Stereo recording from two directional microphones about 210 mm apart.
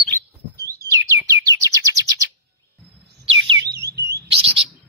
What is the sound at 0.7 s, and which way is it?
Bird, 15° right (ahead or behind).